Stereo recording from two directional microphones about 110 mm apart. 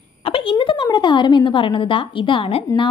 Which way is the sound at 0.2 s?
55° left (ahead or behind).